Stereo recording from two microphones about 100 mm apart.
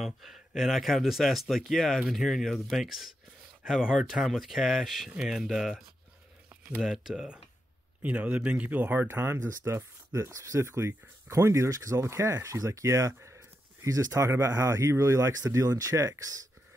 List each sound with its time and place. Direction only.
0.0 s speech: 5° right (ahead or behind); by 16.3 s 35° right (ahead or behind)